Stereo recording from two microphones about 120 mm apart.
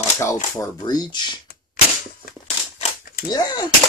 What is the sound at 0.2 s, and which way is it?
Speech, 25° left (ahead or behind).